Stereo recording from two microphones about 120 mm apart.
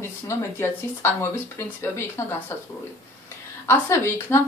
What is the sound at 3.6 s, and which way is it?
Speech, 20° left (ahead or behind).